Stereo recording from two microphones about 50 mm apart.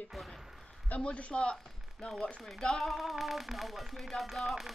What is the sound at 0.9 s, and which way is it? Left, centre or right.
A man's voice, left.